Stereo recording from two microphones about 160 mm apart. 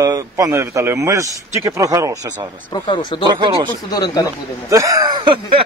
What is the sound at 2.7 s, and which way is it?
Speech, 30° left (ahead or behind).